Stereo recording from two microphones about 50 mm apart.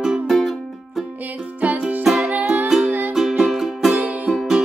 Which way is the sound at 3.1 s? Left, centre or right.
Centre.